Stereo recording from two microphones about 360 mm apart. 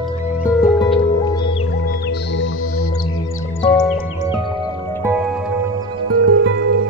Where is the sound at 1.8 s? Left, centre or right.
Left.